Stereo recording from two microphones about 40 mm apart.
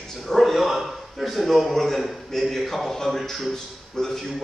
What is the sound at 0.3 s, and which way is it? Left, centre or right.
A man's voice, centre.